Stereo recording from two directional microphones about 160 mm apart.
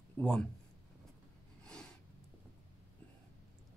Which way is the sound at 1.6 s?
5° left (ahead or behind).